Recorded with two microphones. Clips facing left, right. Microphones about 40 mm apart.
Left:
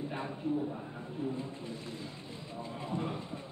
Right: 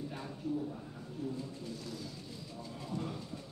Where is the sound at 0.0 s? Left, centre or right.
Left.